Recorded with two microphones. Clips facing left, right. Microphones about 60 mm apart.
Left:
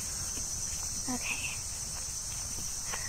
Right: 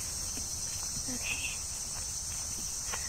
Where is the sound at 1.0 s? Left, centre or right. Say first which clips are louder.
Left 3 dB; left.